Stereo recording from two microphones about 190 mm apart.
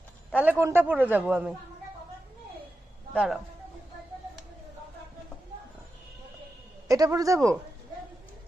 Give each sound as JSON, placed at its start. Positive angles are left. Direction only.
{"t": 0.3, "sound": "a man's voice", "side_deg": -10}
{"t": 3.1, "sound": "speech", "side_deg": -5}
{"t": 6.9, "sound": "a man's voice", "side_deg": -20}